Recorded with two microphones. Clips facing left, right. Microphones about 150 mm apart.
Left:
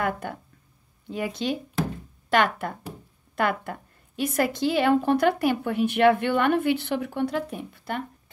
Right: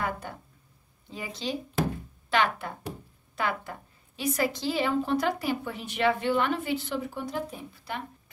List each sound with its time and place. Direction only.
0.0 s a woman's voice: 55° left (ahead or behind)